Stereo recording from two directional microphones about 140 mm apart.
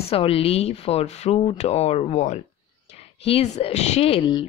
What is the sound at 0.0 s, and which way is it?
Speech, 45° left (ahead or behind).